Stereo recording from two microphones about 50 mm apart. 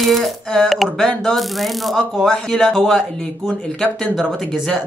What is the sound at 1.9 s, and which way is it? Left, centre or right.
Speech, centre.